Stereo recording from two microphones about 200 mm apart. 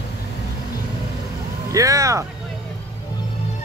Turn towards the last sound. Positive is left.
turn(degrees=-15)  # may be behind; listen again after turning